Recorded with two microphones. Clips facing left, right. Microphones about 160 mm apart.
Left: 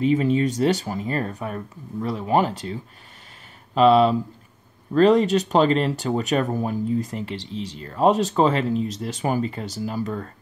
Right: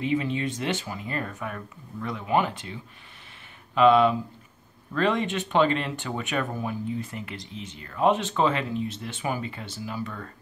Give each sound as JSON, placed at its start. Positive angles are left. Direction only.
{"t": 0.0, "sound": "speech", "side_deg": 40}